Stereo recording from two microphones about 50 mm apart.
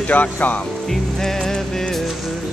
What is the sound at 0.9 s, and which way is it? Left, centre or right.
Music, centre.